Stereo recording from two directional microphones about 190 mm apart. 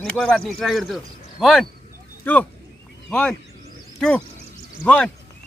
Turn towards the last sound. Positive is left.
turn(degrees=5)  # may be behind; listen again after turning